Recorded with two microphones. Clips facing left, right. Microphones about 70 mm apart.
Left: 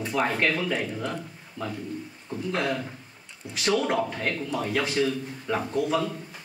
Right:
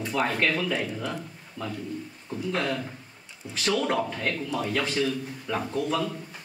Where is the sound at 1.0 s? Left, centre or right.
Centre.